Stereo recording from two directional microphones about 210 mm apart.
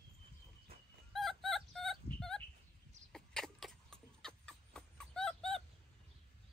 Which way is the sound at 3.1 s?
Centre (ahead or behind).